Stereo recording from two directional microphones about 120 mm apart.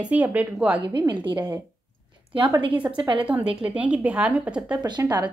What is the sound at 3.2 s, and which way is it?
Speech, 10° right (ahead or behind).